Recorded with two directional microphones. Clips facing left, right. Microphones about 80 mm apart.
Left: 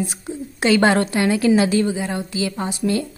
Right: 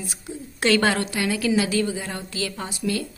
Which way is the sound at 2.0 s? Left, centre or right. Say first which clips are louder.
Left 6 dB; centre.